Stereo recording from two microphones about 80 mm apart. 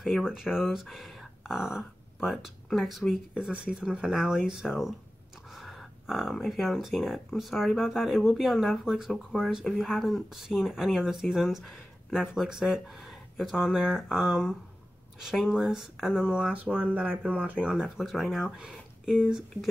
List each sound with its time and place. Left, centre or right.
0.0 s speech: centre
5.5 s a sound: centre
6.3 s speech: centre
9.1 s speech: centre